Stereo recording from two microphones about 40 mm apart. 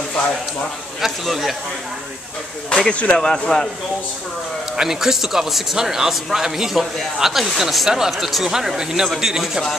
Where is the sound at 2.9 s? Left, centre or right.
Left.